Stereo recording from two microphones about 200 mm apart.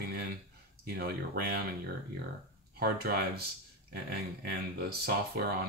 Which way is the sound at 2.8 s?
50° right (ahead or behind).